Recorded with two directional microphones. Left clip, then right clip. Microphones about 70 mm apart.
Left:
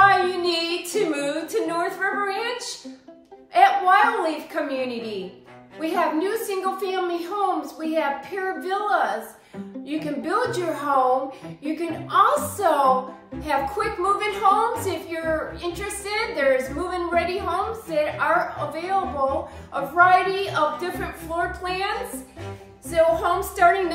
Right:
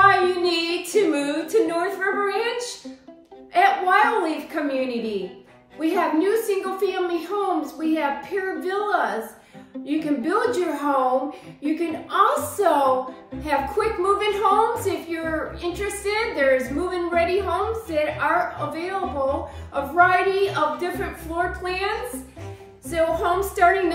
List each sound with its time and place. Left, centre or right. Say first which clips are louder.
0.0 s child singing: even; left
3.5 s a sound: left 1 dB; left
5.8 s a woman's voice: right 1 dB; left